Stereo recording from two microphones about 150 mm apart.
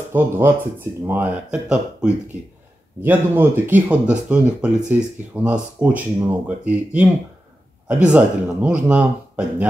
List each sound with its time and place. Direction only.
0.1 s speech: 15° right (ahead or behind)